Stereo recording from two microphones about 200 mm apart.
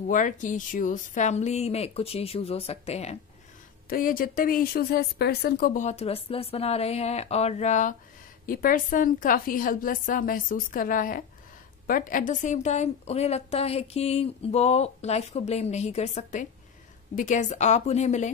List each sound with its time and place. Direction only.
0.1 s a woman's voice: 40° left (ahead or behind)
3.9 s a woman's voice: 45° left (ahead or behind)
5.8 s a woman's voice: 35° left (ahead or behind)